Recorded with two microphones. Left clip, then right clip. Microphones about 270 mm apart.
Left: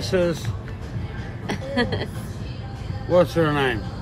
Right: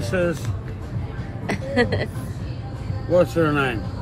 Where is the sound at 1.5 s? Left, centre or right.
Centre.